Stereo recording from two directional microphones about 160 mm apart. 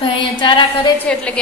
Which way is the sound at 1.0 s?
5° left (ahead or behind).